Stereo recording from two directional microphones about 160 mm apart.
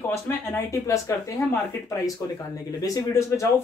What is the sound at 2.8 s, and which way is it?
Speech, 20° left (ahead or behind).